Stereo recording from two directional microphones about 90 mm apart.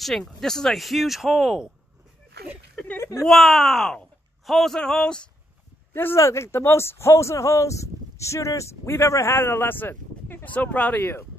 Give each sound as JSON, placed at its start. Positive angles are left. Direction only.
{"t": 0.0, "sound": "speech", "side_deg": 5}
{"t": 3.0, "sound": "a sound", "side_deg": 35}
{"t": 3.3, "sound": "speech", "side_deg": 5}
{"t": 5.9, "sound": "speech", "side_deg": 30}